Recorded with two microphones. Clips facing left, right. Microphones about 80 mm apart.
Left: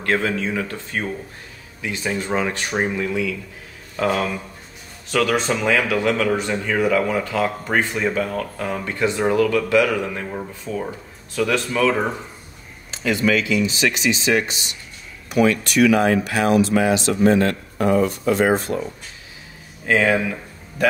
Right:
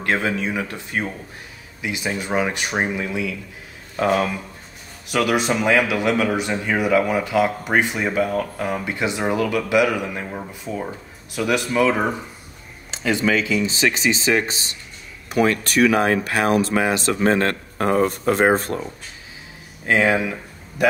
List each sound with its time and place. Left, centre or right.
0.0 s speech: centre; by 18.8 s right
19.9 s speech: centre